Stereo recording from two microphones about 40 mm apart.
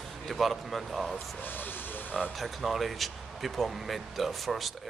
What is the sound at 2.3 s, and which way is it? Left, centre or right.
Speech, centre.